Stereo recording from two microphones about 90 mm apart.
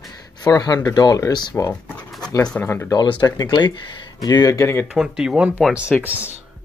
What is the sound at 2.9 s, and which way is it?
Speech, 55° left (ahead or behind).